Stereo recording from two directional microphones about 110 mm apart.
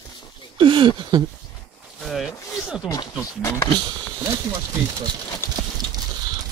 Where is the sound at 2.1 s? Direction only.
Centre (ahead or behind).